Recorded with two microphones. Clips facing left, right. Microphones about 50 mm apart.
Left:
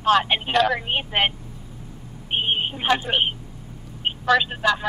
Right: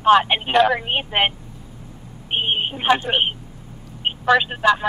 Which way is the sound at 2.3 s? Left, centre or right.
Centre.